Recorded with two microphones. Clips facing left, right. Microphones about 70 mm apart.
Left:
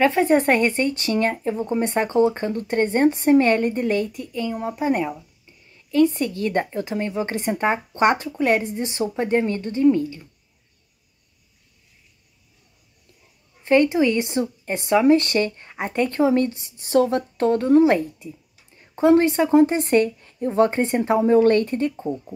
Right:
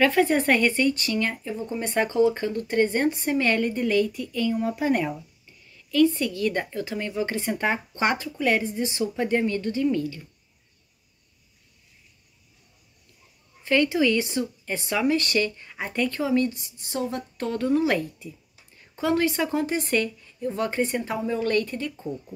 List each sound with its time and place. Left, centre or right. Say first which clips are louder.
0.0 s speech: left 3 dB; left
13.7 s speech: left 4 dB; left
16.9 s speech: left 11 dB; left
17.4 s speech: left 8 dB; left
20.2 s speech: left 9 dB; left